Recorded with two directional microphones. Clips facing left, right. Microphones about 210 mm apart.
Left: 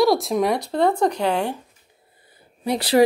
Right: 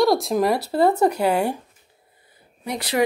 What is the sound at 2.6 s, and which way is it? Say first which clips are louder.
Speech: left 6 dB; 35° left (ahead or behind).